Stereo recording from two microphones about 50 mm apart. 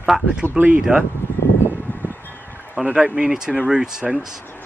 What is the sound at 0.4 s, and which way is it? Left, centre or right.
Speech, right.